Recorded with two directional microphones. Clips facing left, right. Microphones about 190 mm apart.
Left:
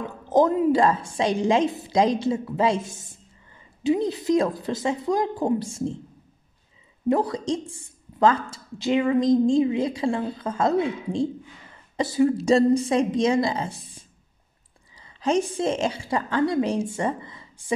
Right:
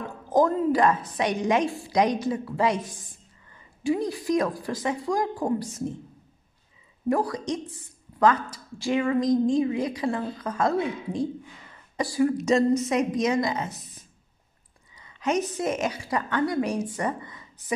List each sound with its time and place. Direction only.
0.3 s speech: 20° left (ahead or behind)
7.1 s a woman's voice: 25° left (ahead or behind)